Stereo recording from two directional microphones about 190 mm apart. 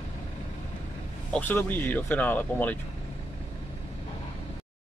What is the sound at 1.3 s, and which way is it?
Speech, 10° left (ahead or behind).